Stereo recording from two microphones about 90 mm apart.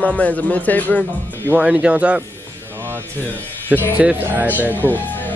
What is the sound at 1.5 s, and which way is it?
Speech, 15° right (ahead or behind).